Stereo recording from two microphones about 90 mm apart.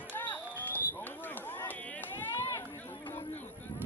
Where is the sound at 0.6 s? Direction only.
20° left (ahead or behind).